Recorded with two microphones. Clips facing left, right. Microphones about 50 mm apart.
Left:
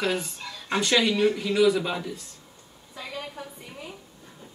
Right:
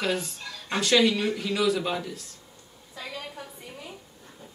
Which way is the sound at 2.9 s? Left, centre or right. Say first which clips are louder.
Left 1 dB; centre.